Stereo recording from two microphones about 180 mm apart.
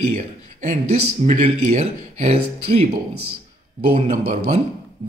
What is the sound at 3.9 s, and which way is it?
Speech, 35° right (ahead or behind).